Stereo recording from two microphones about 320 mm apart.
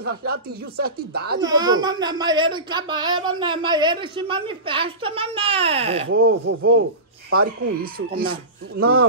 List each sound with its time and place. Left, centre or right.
0.0 s speech: right
1.4 s speech: centre
6.1 s speech: right